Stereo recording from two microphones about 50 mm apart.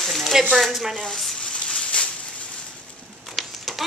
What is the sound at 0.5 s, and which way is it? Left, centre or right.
Speech, centre.